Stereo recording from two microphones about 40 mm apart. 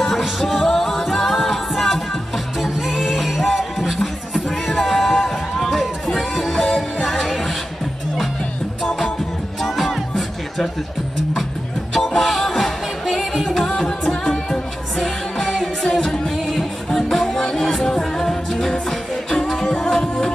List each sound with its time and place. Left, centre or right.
0.0 s music: centre
9.6 s music: centre
11.9 s music: centre
13.6 s music: centre